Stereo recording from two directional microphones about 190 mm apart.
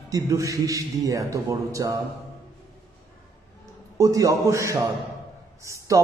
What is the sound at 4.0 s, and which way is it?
A man's voice, 15° right (ahead or behind).